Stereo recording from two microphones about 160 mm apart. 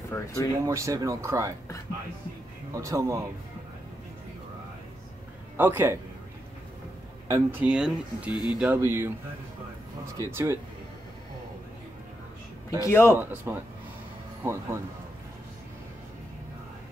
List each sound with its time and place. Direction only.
0.1 s speech: 20° left (ahead or behind)
0.7 s speech: 20° right (ahead or behind)
2.7 s speech: 20° right (ahead or behind)
5.6 s speech: 15° right (ahead or behind)
7.2 s speech: 20° right (ahead or behind)
7.6 s speech: 5° right (ahead or behind)
8.3 s speech: 25° left (ahead or behind)
8.5 s speech: 10° right (ahead or behind)
10.1 s speech: 20° right (ahead or behind)
12.6 s speech: 20° left (ahead or behind)
13.2 s speech: 10° right (ahead or behind)